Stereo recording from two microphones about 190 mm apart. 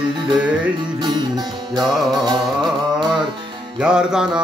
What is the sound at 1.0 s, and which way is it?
Music, 20° right (ahead or behind).